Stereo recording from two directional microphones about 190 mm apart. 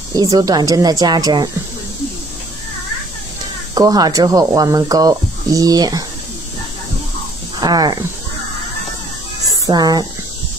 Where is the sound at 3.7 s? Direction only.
20° right (ahead or behind).